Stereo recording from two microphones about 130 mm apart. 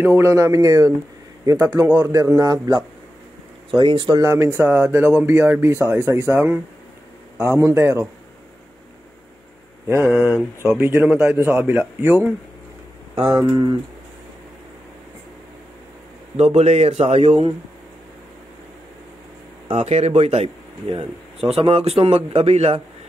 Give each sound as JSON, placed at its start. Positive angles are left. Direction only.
{"t": 0.0, "sound": "speech", "side_deg": -20}
{"t": 3.8, "sound": "speech", "side_deg": -40}
{"t": 4.2, "sound": "speech", "side_deg": -25}
{"t": 6.3, "sound": "speech", "side_deg": -10}
{"t": 9.8, "sound": "speech", "side_deg": -20}
{"t": 10.1, "sound": "speech", "side_deg": -5}
{"t": 10.7, "sound": "speech", "side_deg": -20}
{"t": 13.3, "sound": "speech", "side_deg": -25}
{"t": 16.3, "sound": "a man's voice", "side_deg": -55}
{"t": 19.7, "sound": "a man's voice", "side_deg": -55}
{"t": 21.5, "sound": "a man's voice", "side_deg": -50}